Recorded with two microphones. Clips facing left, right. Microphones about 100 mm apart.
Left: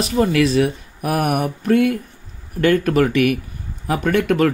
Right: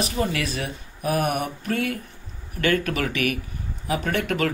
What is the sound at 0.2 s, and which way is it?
Speech, 40° left (ahead or behind).